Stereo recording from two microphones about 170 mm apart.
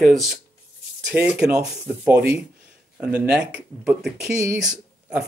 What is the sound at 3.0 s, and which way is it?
Speech, 10° right (ahead or behind).